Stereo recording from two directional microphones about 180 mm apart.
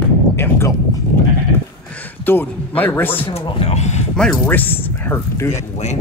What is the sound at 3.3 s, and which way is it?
Speech, 35° left (ahead or behind).